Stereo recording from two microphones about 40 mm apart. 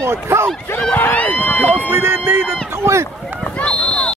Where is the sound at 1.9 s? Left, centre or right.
Right.